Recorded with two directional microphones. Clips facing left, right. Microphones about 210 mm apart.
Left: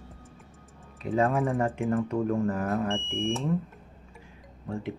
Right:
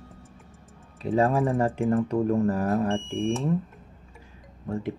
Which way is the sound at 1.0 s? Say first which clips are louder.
Right 3 dB; 30° right (ahead or behind).